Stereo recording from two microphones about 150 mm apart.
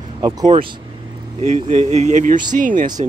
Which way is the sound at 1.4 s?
50° right (ahead or behind).